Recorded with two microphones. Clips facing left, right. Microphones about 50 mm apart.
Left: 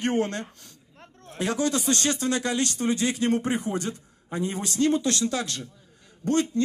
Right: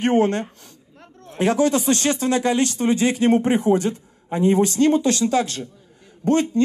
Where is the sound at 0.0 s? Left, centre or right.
Right.